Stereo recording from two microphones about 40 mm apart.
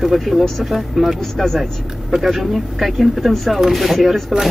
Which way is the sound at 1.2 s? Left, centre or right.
Centre.